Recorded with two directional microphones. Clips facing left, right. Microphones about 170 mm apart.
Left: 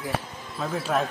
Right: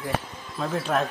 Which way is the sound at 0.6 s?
5° left (ahead or behind).